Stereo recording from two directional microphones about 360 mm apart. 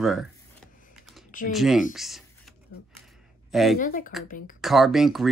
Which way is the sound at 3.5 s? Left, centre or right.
Centre.